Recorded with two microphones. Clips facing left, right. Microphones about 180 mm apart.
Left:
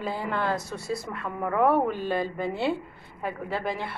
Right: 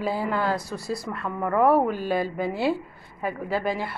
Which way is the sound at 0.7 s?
25° left (ahead or behind).